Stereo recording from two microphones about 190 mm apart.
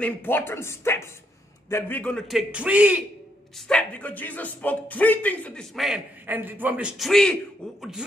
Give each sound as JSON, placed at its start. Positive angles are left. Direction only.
{"t": 0.0, "sound": "speech", "side_deg": 10}
{"t": 3.5, "sound": "speech", "side_deg": 5}